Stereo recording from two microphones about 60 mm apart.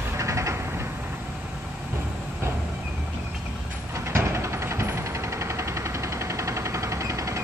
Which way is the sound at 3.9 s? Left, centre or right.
Right.